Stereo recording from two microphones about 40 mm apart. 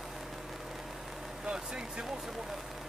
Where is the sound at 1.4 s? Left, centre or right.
Right.